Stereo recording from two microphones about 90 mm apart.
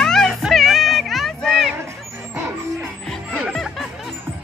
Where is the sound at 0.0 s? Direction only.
5° left (ahead or behind).